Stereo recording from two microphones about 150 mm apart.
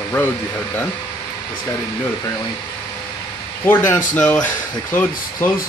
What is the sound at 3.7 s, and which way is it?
Speech, 15° left (ahead or behind).